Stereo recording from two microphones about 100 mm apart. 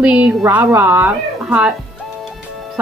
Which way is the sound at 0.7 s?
25° right (ahead or behind).